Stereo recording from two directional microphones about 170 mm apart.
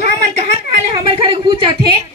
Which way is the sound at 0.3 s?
40° right (ahead or behind).